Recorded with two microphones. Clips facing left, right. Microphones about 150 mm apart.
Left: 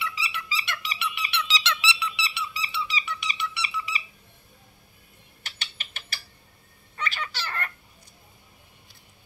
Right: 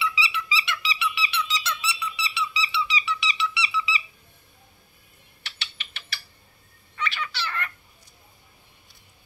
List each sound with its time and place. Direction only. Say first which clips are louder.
0.0 s squeak: right 5 dB; 50° left (ahead or behind)
5.4 s mechanisms: even; 45° left (ahead or behind)
7.0 s a sound: right 2 dB; 40° left (ahead or behind)